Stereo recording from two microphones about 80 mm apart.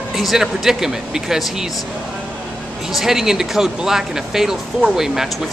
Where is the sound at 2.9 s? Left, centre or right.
Centre.